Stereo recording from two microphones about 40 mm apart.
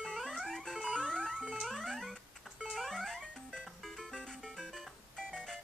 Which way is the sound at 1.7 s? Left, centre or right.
Centre.